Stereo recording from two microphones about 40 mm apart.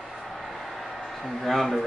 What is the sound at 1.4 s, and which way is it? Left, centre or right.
Speech, centre.